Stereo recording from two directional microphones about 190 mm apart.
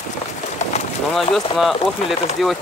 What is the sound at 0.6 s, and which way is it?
Bird, 40° left (ahead or behind).